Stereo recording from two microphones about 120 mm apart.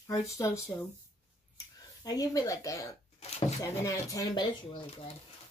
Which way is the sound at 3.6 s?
25° left (ahead or behind).